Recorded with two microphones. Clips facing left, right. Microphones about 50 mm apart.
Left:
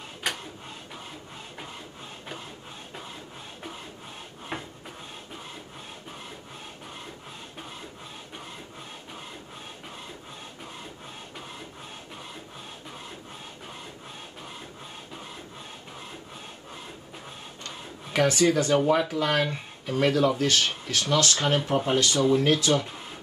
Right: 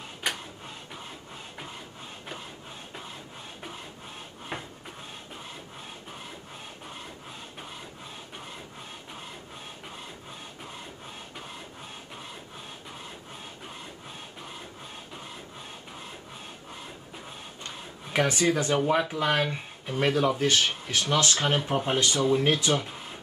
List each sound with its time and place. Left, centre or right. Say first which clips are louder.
0.2 s printer: even; centre
4.5 s printer: left 1 dB; centre
18.1 s speech: left 3 dB; centre
22.7 s speech: left 2 dB; centre